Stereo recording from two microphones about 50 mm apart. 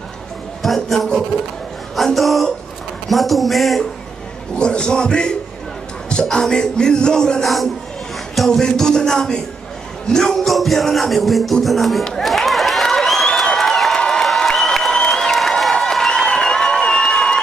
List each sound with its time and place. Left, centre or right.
0.6 s music: centre
4.6 s music: centre
11.6 s a sound: centre
14.2 s crowd: centre
14.9 s applause: centre
15.8 s crowd: centre